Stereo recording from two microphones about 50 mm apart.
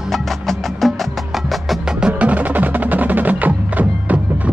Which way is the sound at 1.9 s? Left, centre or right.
Centre.